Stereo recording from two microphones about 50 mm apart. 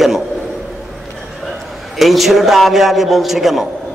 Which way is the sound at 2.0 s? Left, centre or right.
Centre.